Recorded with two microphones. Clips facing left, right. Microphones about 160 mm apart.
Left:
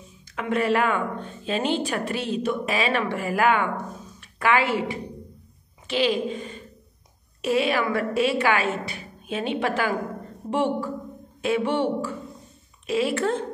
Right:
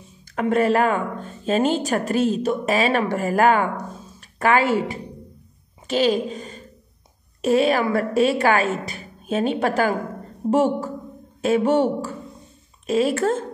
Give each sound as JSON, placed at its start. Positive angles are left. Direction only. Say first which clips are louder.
{"t": 0.4, "sound": "a woman's voice", "louder": "right 4 dB", "side_deg": -40}